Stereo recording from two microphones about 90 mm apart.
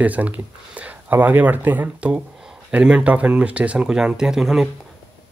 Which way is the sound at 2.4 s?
5° right (ahead or behind).